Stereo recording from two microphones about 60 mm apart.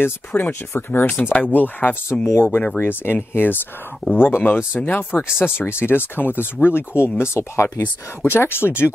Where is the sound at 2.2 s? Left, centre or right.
Left.